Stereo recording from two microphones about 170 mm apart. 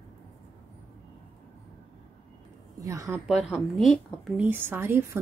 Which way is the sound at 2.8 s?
20° right (ahead or behind).